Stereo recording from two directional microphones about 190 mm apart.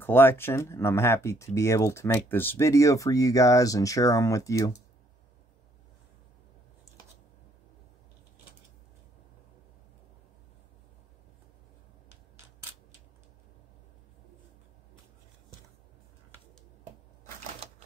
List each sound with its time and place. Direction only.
0.0 s speech: 10° left (ahead or behind)